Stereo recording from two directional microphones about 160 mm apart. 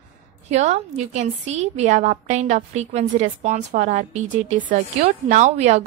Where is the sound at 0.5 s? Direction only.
45° right (ahead or behind).